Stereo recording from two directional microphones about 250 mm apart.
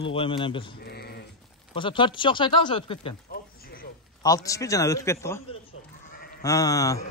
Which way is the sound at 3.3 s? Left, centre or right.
Left.